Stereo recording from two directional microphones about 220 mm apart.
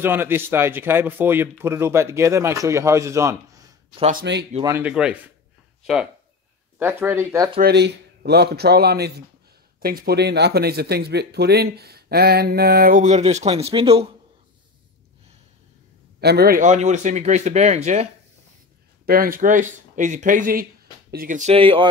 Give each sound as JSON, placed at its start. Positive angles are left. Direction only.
{"t": 0.0, "sound": "speech", "side_deg": -10}
{"t": 4.1, "sound": "speech", "side_deg": -45}
{"t": 4.6, "sound": "speech", "side_deg": -10}
{"t": 6.8, "sound": "speech", "side_deg": -10}
{"t": 7.6, "sound": "speech", "side_deg": -45}
{"t": 16.2, "sound": "speech", "side_deg": -45}
{"t": 19.0, "sound": "speech", "side_deg": -40}